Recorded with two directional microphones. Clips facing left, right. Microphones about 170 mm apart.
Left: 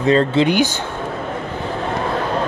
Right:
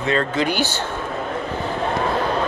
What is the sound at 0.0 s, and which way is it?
Speech, 30° left (ahead or behind).